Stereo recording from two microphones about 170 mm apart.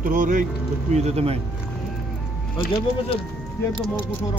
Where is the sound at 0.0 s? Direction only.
50° right (ahead or behind).